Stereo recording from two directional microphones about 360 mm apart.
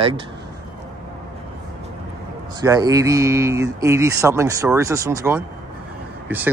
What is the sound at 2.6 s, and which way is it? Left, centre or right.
Speech, centre.